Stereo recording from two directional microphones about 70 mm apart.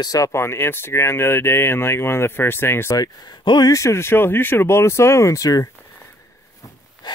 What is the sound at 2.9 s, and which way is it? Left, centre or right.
Speech, left.